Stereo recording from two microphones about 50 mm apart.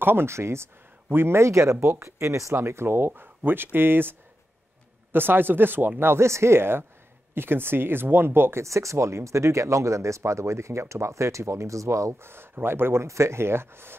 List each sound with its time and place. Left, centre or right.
0.0 s speech: right
1.0 s speech: right
3.1 s speech: right
8.6 s speech: right
13.0 s speech: right